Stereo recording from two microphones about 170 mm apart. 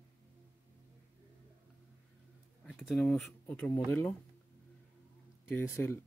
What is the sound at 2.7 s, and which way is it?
Speech, centre (ahead or behind).